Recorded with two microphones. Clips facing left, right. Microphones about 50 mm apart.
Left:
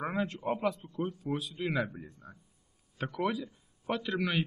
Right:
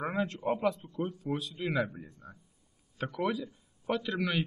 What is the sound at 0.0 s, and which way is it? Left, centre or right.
A man's voice, centre.